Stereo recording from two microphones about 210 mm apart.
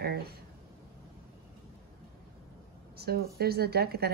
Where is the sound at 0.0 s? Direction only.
50° right (ahead or behind).